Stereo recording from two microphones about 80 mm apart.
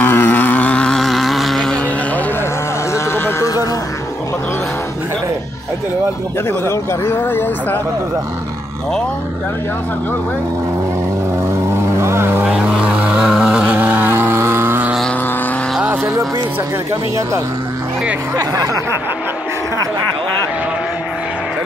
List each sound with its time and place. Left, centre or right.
0.0 s vehicle: left; by 1.8 s centre
2.9 s a sound: left
6.6 s speech: left
11.7 s vehicle: right
12.4 s vehicle: centre
13.7 s a sound: right
15.8 s vehicle: right
18.3 s speech: right